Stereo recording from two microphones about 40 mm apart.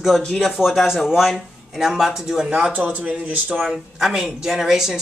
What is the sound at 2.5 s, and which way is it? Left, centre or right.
Speech, right.